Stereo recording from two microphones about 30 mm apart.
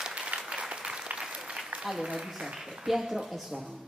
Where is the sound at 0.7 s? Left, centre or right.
Right.